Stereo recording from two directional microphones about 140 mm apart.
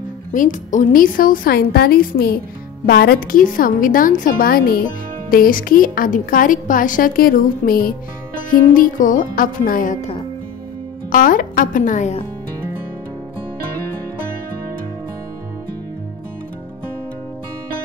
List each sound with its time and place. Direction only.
0.3 s a woman's voice: 65° left (ahead or behind); by 7.9 s 90° left
8.7 s speech: 75° left (ahead or behind)
11.1 s speech: 75° left (ahead or behind)